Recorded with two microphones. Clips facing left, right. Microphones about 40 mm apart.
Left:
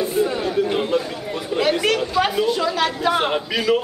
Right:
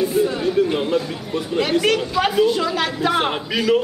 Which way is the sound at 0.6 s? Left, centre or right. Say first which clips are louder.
Right 1 dB; centre.